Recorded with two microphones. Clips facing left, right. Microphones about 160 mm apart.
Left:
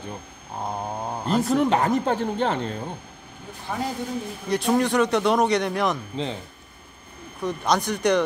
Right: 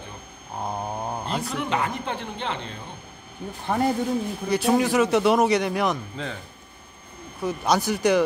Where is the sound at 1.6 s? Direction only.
40° left (ahead or behind).